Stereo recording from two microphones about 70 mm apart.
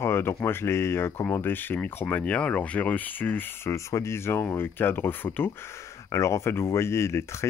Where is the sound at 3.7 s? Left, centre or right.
Left.